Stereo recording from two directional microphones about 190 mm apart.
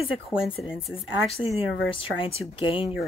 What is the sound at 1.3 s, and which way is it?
Speech, 30° left (ahead or behind).